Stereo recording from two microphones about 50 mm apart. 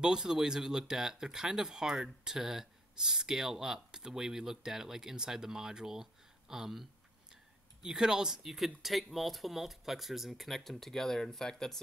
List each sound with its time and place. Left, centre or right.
0.0 s speech: centre